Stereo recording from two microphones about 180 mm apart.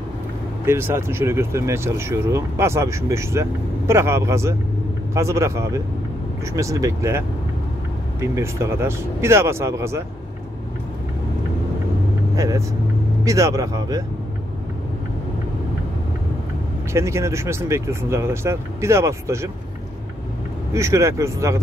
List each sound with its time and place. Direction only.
0.7 s speech: 15° right (ahead or behind)
12.4 s speech: 20° right (ahead or behind)
16.9 s speech: 15° right (ahead or behind)
20.7 s speech: 15° right (ahead or behind)